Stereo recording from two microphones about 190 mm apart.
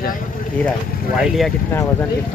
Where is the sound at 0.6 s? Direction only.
Centre (ahead or behind).